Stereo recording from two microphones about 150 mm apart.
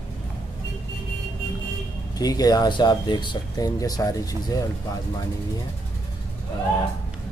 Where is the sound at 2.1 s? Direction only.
25° left (ahead or behind).